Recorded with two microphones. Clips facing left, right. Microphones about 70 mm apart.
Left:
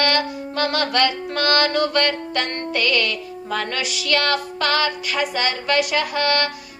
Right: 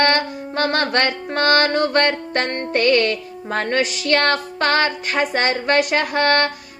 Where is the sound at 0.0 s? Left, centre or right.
Right.